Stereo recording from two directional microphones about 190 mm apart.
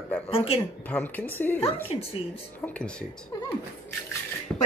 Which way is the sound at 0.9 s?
10° left (ahead or behind).